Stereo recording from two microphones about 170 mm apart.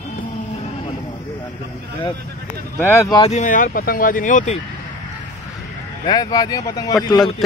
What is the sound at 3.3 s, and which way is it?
Speech, 45° left (ahead or behind).